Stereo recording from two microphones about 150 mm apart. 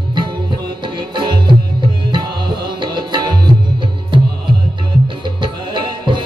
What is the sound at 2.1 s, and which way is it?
Music, 30° right (ahead or behind).